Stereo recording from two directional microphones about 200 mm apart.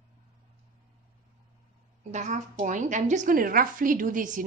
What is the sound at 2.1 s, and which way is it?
A woman's voice, 35° right (ahead or behind).